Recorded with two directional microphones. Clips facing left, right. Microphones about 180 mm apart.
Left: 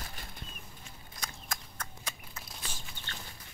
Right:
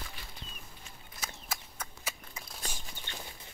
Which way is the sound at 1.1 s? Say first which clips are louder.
Right 1 dB; 5° right (ahead or behind).